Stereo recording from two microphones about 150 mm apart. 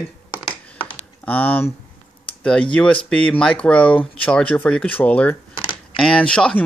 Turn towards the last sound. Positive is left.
turn(degrees=5)  # may be behind; listen again after turning